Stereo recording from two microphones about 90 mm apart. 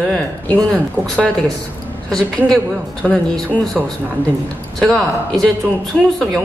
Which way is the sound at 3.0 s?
10° left (ahead or behind).